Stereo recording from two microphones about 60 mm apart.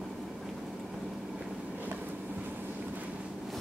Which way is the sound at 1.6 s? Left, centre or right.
Right.